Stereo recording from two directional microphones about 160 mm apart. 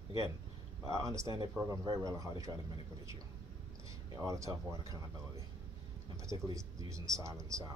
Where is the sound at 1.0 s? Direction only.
20° right (ahead or behind).